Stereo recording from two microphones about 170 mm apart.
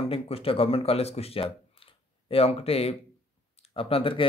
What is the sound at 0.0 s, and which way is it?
Speech, 35° left (ahead or behind).